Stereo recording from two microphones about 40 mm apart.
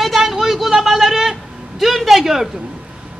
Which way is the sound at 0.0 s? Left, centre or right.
Centre.